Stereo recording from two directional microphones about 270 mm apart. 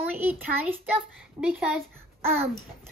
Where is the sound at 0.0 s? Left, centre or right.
Centre.